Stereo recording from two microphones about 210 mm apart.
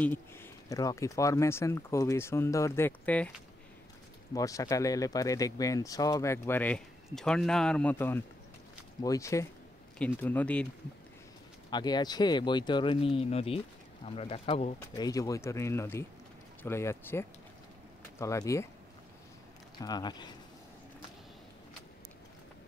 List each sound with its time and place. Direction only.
0.0 s speech: 10° left (ahead or behind)
4.3 s speech: 15° left (ahead or behind)
11.7 s speech: 20° left (ahead or behind)
15.0 s speech: 15° left (ahead or behind)
19.8 s speech: 20° left (ahead or behind)